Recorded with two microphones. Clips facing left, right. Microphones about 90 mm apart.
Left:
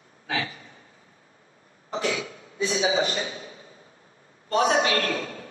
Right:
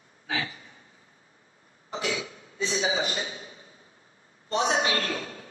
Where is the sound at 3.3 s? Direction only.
40° left (ahead or behind).